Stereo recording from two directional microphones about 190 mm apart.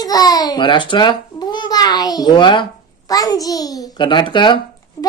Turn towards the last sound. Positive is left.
turn(degrees=25)  # may be behind; listen again after turning